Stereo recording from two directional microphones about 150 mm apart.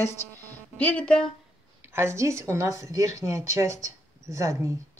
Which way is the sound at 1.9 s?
15° right (ahead or behind).